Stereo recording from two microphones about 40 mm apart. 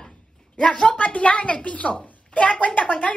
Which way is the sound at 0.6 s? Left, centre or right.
Left.